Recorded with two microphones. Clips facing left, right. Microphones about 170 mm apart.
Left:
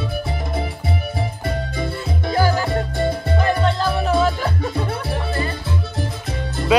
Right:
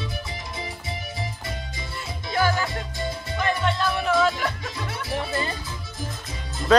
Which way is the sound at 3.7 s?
30° left (ahead or behind).